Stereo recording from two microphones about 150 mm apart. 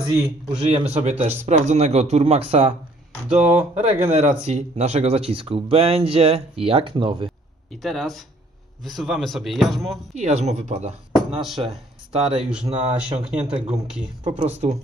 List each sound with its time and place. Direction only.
0.6 s speech: 40° right (ahead or behind)
3.3 s speech: 10° right (ahead or behind)
4.0 s speech: 45° right (ahead or behind)
7.8 s speech: centre (ahead or behind)
10.1 s speech: 50° right (ahead or behind)